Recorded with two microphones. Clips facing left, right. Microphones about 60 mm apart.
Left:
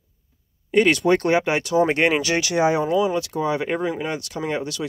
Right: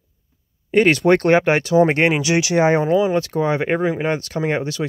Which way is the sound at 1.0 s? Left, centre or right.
Right.